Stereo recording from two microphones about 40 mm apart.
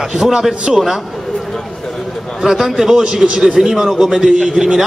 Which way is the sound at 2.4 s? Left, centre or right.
Centre.